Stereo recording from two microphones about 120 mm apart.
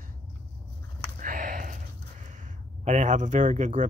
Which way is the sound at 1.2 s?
90° right.